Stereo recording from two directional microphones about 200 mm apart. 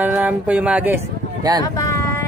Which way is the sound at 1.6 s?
15° left (ahead or behind).